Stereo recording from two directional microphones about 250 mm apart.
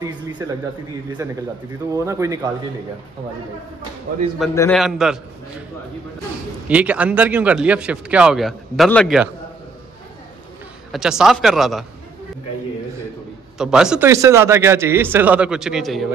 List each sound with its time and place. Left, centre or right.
0.0 s a sound: centre
1.2 s speech: centre
4.6 s speech: centre
6.7 s speech: centre
10.9 s speech: centre
13.6 s speech: centre